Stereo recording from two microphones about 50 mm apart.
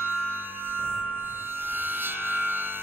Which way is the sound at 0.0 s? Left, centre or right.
Right.